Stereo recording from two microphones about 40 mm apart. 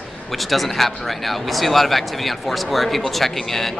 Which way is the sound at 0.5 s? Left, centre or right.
Centre.